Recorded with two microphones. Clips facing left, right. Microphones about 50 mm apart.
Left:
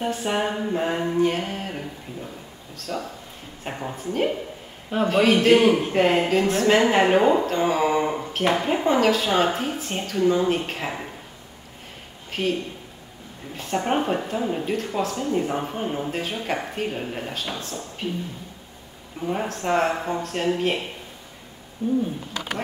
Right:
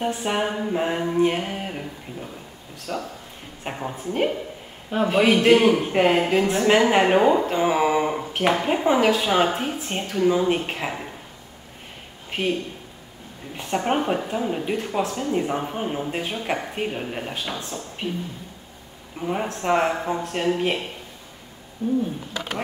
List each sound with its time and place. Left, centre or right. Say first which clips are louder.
0.0 s speech: even; centre
2.9 s speech: even; centre
12.3 s speech: even; centre
13.6 s speech: even; centre
19.1 s speech: even; centre